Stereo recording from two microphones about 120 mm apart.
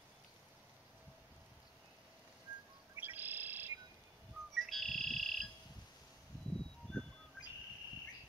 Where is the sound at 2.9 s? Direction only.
15° right (ahead or behind).